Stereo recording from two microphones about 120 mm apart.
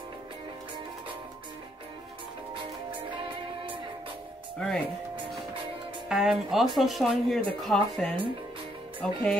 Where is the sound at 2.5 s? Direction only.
40° right (ahead or behind).